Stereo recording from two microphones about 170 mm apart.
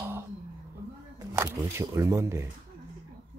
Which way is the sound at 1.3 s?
15° right (ahead or behind).